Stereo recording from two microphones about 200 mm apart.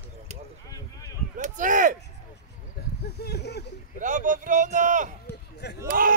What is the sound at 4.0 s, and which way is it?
Speech, 40° right (ahead or behind).